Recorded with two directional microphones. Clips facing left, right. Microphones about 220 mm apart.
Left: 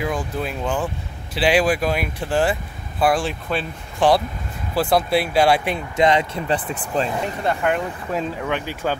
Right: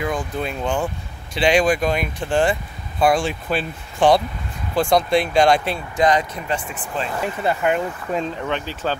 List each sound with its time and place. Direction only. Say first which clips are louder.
0.0 s speech: even; 5° left (ahead or behind)
5.9 s speech: left 1 dB; 25° left (ahead or behind)
7.4 s speech: right 1 dB; centre (ahead or behind)